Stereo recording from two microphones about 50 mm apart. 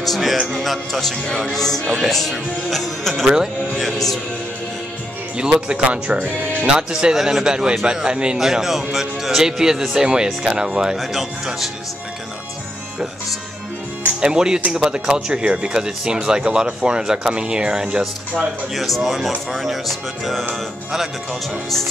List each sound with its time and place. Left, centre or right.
0.0 s speech: centre
5.4 s speech: centre
6.7 s speech: centre
11.0 s speech: centre
14.2 s speech: centre
18.8 s speech: centre